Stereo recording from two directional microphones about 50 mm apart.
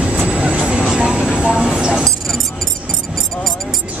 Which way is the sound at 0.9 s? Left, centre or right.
Centre.